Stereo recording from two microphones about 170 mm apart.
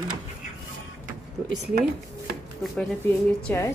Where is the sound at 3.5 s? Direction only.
10° left (ahead or behind).